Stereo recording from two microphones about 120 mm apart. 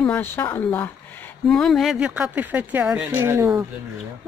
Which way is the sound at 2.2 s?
15° right (ahead or behind).